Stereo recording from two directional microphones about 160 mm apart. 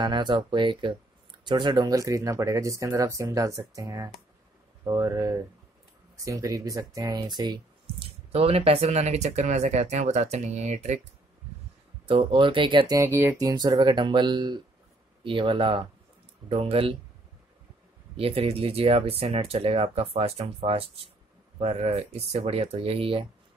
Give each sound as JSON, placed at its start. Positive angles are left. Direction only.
{"t": 0.0, "sound": "speech", "side_deg": -30}
{"t": 12.1, "sound": "speech", "side_deg": -30}
{"t": 18.1, "sound": "speech", "side_deg": -35}